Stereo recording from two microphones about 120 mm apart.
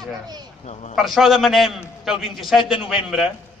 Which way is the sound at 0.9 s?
Centre (ahead or behind).